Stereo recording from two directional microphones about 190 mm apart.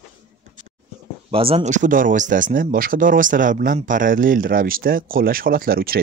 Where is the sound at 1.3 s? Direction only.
30° right (ahead or behind).